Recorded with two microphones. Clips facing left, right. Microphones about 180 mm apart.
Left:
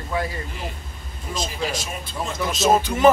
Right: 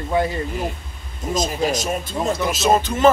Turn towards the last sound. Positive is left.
turn(degrees=10)  # may be behind; listen again after turning